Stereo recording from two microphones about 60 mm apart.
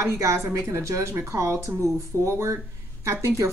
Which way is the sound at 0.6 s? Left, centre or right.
Right.